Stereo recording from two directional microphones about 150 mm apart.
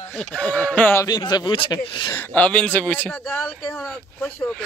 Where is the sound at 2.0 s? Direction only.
15° left (ahead or behind).